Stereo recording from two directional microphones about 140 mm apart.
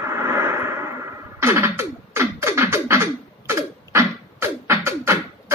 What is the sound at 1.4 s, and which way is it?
Beatboxing, 20° right (ahead or behind).